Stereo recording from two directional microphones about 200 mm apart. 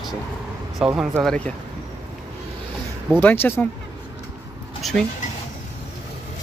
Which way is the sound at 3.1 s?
10° left (ahead or behind).